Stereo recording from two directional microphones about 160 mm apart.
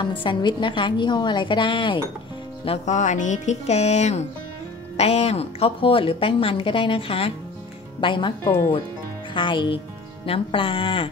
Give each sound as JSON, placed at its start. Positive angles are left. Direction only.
{"t": 0.2, "sound": "a woman's voice", "side_deg": 30}
{"t": 2.6, "sound": "a woman's voice", "side_deg": 40}
{"t": 9.3, "sound": "a woman's voice", "side_deg": 30}